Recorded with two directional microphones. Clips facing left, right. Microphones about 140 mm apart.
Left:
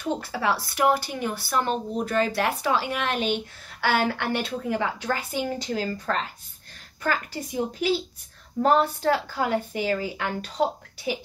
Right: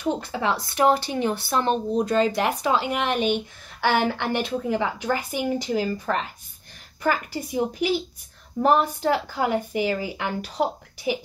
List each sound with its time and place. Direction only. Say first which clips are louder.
0.3 s a woman's voice: right 1 dB; 20° right (ahead or behind)